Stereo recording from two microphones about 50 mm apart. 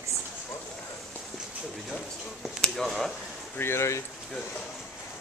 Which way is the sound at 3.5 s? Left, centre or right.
Left.